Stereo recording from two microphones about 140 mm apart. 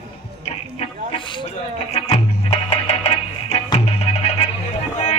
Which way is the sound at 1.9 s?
50° left (ahead or behind).